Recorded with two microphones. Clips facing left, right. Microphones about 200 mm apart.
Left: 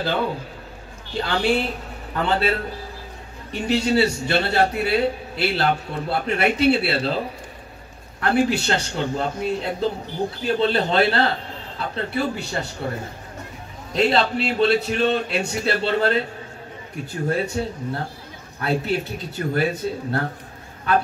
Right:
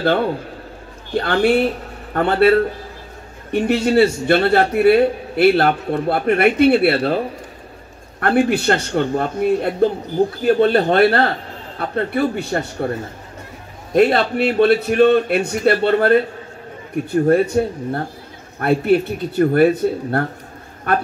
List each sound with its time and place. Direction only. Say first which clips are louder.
1.1 s a man's voice: right 6 dB; 55° right (ahead or behind)
3.5 s a man's voice: right 5 dB; 55° right (ahead or behind)
8.2 s a man's voice: right 4 dB; 55° right (ahead or behind)
13.9 s a man's voice: right 5 dB; 55° right (ahead or behind)